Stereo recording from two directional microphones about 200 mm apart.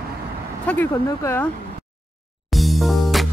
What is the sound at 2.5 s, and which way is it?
Music, centre (ahead or behind).